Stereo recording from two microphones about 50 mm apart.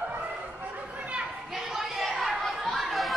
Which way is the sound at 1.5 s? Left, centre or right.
Centre.